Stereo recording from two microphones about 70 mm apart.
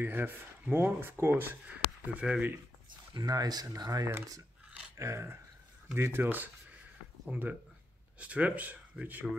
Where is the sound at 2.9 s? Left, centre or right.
Right.